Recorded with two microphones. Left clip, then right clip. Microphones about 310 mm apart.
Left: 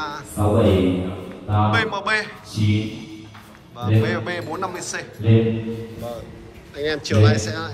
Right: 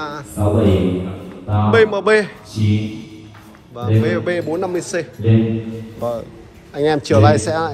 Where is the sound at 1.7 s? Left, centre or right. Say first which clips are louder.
Right 10 dB; centre.